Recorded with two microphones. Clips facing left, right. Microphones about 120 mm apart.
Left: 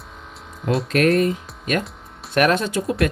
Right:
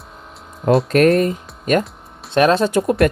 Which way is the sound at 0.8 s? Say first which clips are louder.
Even; 40° right (ahead or behind).